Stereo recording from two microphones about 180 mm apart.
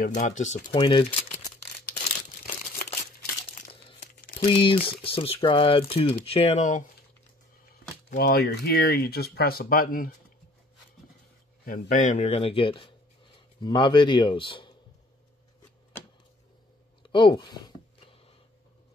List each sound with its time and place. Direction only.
0.0 s speech: 45° left (ahead or behind)
0.7 s speech: 25° left (ahead or behind)
2.4 s crumpling: 50° left (ahead or behind)
4.5 s speech: 30° left (ahead or behind)
8.2 s speech: 60° left (ahead or behind)
11.6 s speech: 50° left (ahead or behind); by 14.7 s 30° left (ahead or behind)
17.0 s a sound: 25° left (ahead or behind)